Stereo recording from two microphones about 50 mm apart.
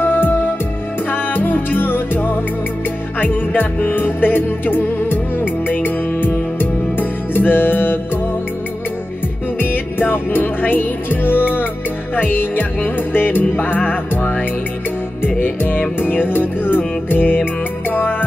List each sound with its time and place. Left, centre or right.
0.0 s music: left
9.6 s music: left